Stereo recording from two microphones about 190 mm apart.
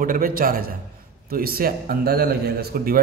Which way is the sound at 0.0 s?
45° right (ahead or behind).